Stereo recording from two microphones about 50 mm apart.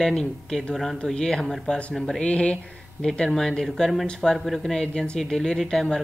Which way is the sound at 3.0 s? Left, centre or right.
Centre.